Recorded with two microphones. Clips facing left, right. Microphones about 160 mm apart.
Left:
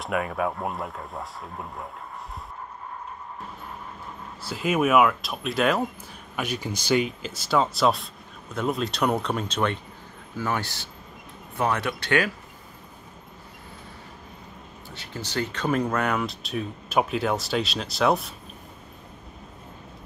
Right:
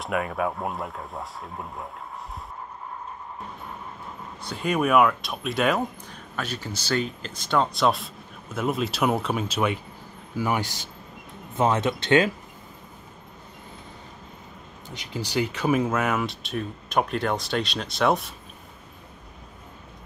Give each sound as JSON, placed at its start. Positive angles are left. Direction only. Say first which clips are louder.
{"t": 0.0, "sound": "speech", "louder": "even", "side_deg": 0}
{"t": 4.4, "sound": "speech", "louder": "left 1 dB", "side_deg": 5}
{"t": 6.3, "sound": "speech", "louder": "left 3 dB", "side_deg": 10}
{"t": 14.9, "sound": "speech", "louder": "right 4 dB", "side_deg": -15}